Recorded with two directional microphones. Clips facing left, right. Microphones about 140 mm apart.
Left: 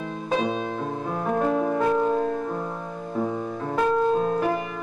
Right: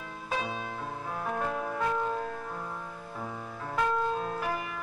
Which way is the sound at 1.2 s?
35° left (ahead or behind).